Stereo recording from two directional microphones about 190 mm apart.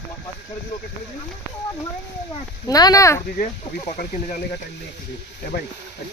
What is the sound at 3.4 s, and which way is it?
Speech, 45° left (ahead or behind).